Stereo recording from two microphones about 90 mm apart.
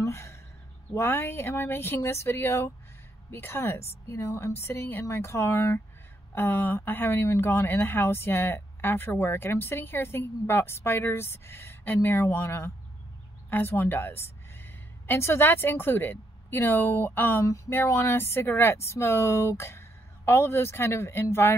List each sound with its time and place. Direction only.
0.0 s a sound: 30° left (ahead or behind)
0.9 s a woman's voice: 25° left (ahead or behind)
17.4 s speech: 35° left (ahead or behind)